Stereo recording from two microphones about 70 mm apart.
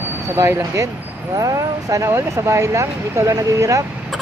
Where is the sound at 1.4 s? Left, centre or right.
Right.